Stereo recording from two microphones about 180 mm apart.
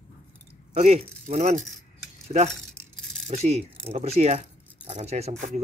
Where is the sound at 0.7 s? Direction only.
35° right (ahead or behind).